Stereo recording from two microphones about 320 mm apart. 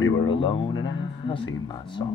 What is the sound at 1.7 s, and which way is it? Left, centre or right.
Speech, centre.